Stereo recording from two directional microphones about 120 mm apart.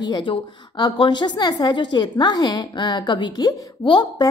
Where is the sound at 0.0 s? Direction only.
40° left (ahead or behind).